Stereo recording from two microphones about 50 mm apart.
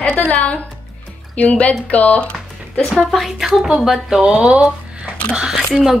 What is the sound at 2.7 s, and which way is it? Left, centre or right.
A woman's voice, centre.